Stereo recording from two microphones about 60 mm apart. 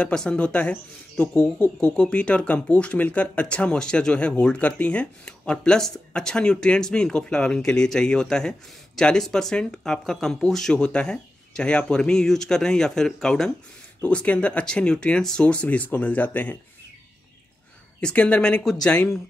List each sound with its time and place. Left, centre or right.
0.0 s speech: centre
14.0 s speech: left
18.0 s speech: centre